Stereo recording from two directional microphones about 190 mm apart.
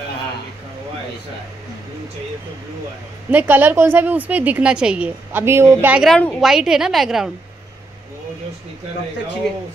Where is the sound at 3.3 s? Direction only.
10° right (ahead or behind).